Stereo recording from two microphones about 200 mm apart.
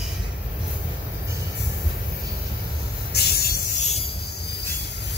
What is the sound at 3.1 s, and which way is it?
Spray, 55° left (ahead or behind).